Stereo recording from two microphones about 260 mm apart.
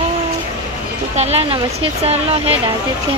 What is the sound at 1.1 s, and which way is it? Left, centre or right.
Speech, right.